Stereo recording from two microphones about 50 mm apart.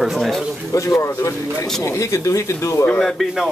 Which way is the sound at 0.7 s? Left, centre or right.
Left.